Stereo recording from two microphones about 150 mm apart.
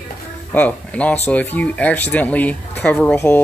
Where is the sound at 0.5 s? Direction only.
10° left (ahead or behind).